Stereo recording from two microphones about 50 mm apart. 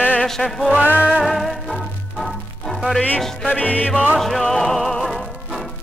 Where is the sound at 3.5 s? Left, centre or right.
Left.